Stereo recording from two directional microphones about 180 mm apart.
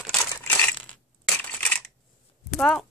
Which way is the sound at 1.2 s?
5° left (ahead or behind).